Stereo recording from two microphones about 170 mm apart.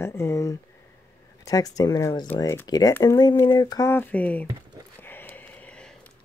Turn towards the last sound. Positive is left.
turn(degrees=5)  # may be behind; listen again after turning